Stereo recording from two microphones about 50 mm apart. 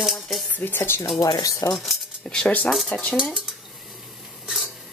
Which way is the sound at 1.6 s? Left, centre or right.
Left.